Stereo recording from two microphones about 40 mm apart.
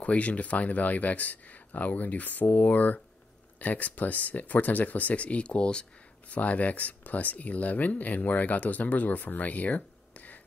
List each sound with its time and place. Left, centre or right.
0.0 s speech: left
6.2 s speech: left